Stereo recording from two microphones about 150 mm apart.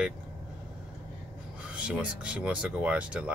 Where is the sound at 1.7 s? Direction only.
5° right (ahead or behind).